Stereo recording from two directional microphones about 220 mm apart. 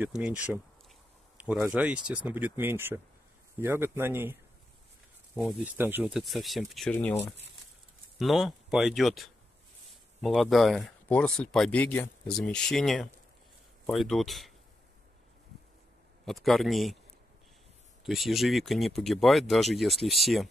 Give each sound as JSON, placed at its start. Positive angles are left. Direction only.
{"t": 0.0, "sound": "speech", "side_deg": -5}
{"t": 1.4, "sound": "speech", "side_deg": 0}
{"t": 16.3, "sound": "speech", "side_deg": 0}
{"t": 18.0, "sound": "speech", "side_deg": 0}